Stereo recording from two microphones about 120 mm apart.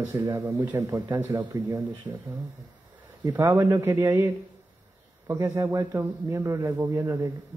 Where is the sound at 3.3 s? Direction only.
30° right (ahead or behind).